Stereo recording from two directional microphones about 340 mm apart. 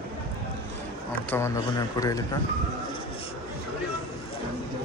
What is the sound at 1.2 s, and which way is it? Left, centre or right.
A man's voice, centre.